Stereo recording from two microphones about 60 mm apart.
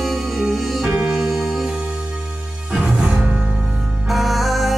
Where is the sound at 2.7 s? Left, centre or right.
Centre.